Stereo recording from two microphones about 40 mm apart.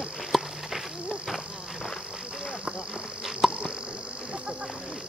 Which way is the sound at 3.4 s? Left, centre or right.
Centre.